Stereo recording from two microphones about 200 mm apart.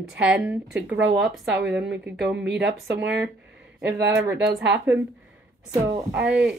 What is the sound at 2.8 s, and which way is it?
Speech, 70° right (ahead or behind).